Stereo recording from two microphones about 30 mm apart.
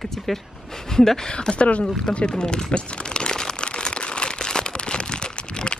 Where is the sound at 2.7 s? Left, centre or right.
Left.